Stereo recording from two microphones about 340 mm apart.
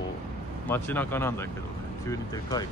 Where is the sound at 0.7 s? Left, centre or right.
Centre.